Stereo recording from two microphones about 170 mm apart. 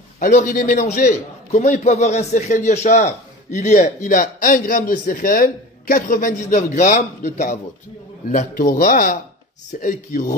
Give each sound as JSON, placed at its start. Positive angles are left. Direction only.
{"t": 0.2, "sound": "a man's voice", "side_deg": 50}